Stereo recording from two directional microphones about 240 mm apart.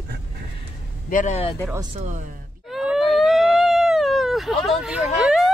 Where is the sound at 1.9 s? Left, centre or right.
Right.